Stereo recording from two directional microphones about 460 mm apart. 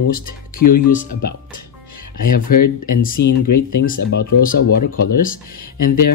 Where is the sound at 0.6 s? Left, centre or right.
Centre.